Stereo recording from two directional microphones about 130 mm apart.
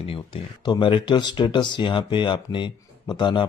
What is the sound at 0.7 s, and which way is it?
A man's voice, 40° left (ahead or behind).